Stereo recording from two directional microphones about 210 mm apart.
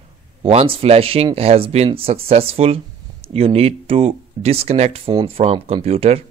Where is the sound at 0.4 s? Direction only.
25° right (ahead or behind).